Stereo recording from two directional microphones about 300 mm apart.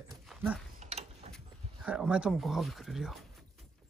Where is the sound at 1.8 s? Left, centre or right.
Centre.